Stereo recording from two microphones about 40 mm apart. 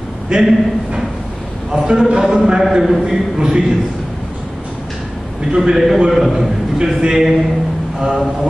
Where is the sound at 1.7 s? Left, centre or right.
Centre.